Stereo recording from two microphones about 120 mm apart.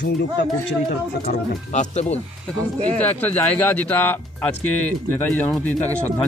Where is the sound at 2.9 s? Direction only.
15° left (ahead or behind).